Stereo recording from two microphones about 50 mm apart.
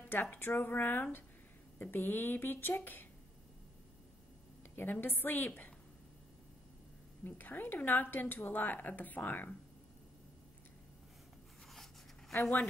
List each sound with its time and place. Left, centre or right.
0.1 s speech: left
4.9 s a woman's voice: left
7.2 s a woman's voice: left
11.7 s a sound: centre